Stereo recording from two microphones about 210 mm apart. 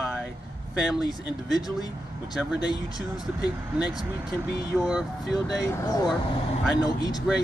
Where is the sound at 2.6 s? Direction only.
20° left (ahead or behind).